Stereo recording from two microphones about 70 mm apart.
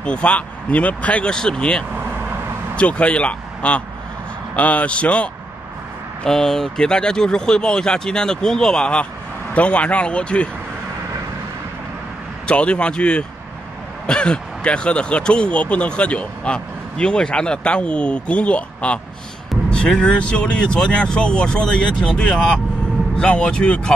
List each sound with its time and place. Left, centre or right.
0.0 s speech: centre
6.2 s speech: centre
12.4 s speech: centre